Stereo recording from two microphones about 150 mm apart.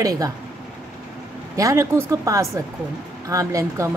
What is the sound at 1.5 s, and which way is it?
A woman's voice, 20° right (ahead or behind).